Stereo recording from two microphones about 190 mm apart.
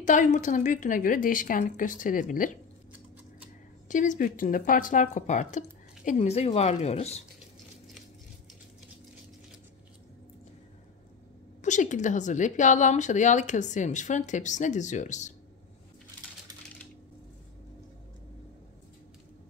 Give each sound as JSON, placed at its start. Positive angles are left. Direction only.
{"t": 0.0, "sound": "a woman's voice", "side_deg": 40}
{"t": 3.9, "sound": "a woman's voice", "side_deg": 40}
{"t": 11.6, "sound": "a woman's voice", "side_deg": 40}